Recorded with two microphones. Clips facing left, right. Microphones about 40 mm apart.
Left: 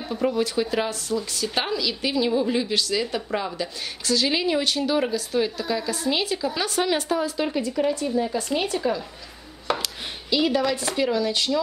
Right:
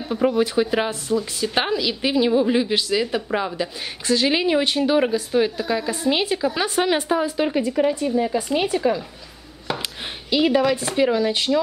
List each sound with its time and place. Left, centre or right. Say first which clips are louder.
0.1 s a woman's voice: right 4 dB; right
10.3 s a woman's voice: right 4 dB; right